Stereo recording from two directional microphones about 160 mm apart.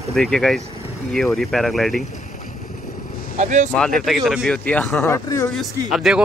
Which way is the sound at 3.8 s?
5° left (ahead or behind).